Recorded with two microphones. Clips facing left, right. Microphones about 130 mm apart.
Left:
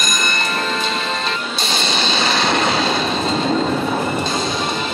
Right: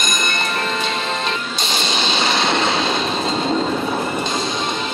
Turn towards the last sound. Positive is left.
turn(degrees=5)  # may be behind; listen again after turning